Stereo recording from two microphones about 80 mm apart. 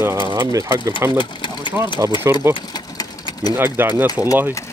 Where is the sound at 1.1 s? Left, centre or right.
Left.